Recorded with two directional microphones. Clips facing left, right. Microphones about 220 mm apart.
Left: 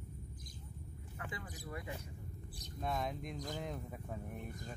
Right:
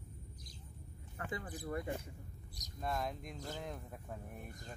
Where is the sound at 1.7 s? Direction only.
50° right (ahead or behind).